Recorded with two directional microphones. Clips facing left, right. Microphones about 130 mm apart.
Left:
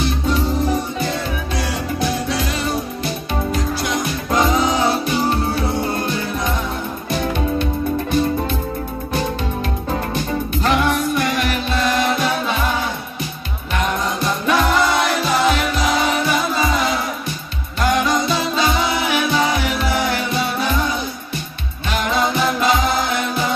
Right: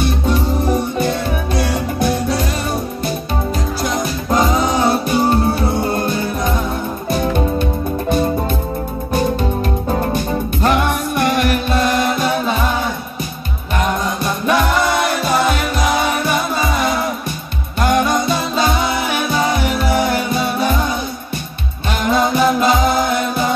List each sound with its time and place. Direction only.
0.0 s music: 55° right (ahead or behind)
3.8 s music: 35° right (ahead or behind)
10.6 s music: 50° right (ahead or behind)
14.5 s music: 55° right (ahead or behind)
22.0 s music: 45° right (ahead or behind)